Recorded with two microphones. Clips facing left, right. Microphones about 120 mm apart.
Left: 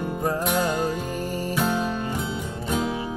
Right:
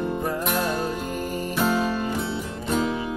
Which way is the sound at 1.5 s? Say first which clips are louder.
Right 2 dB; centre (ahead or behind).